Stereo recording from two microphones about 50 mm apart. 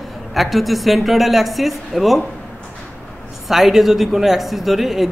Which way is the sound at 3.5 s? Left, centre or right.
Centre.